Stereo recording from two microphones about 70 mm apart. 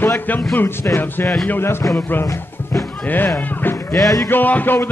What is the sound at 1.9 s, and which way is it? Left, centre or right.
Music, left.